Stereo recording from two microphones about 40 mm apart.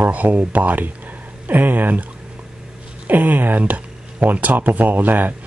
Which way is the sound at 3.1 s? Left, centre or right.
Right.